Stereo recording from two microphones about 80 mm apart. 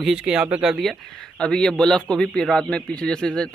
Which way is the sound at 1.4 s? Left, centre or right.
Centre.